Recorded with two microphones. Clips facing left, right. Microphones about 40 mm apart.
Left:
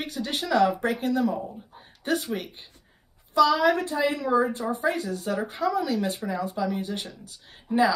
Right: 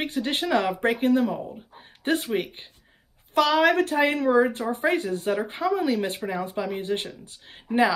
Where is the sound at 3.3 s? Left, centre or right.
Right.